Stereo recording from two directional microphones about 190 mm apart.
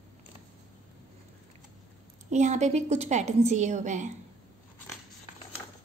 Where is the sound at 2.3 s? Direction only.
35° right (ahead or behind).